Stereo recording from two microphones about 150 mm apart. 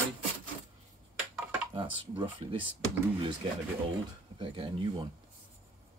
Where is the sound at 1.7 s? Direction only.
35° right (ahead or behind).